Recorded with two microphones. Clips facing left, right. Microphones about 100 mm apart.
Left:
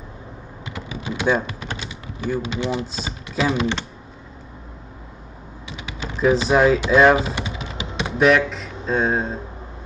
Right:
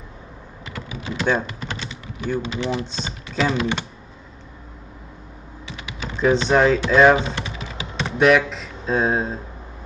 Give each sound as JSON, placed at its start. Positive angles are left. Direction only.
{"t": 0.7, "sound": "typing", "side_deg": 15}
{"t": 2.7, "sound": "speech", "side_deg": 5}
{"t": 6.1, "sound": "speech", "side_deg": 5}
{"t": 7.4, "sound": "music", "side_deg": 20}
{"t": 7.9, "sound": "speech", "side_deg": 0}